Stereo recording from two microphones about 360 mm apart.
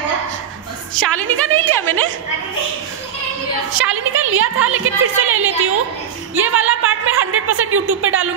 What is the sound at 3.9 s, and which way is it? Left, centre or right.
A woman's voice, right.